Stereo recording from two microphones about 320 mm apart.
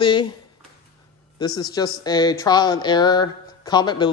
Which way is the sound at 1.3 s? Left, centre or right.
Centre.